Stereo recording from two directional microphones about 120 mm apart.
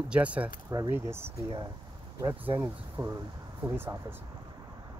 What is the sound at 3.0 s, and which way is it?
Speech, 35° right (ahead or behind).